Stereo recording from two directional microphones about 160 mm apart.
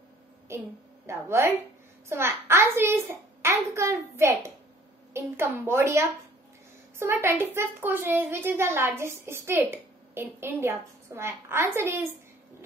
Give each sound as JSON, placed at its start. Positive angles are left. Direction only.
{"t": 0.5, "sound": "a woman's voice", "side_deg": -15}